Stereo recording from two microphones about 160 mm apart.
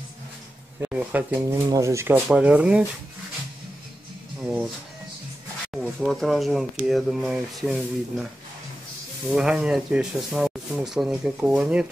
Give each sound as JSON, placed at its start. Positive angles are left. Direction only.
{"t": 0.7, "sound": "speech", "side_deg": -10}
{"t": 1.7, "sound": "speech", "side_deg": -20}
{"t": 4.4, "sound": "speech", "side_deg": -5}
{"t": 5.7, "sound": "speech", "side_deg": 0}
{"t": 9.3, "sound": "speech", "side_deg": -5}